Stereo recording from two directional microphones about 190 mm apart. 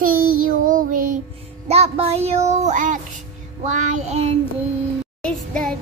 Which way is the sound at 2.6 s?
40° right (ahead or behind).